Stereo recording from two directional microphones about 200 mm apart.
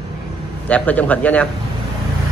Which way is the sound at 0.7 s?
5° left (ahead or behind).